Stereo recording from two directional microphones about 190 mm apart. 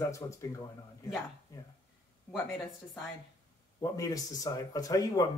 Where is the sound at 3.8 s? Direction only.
20° left (ahead or behind).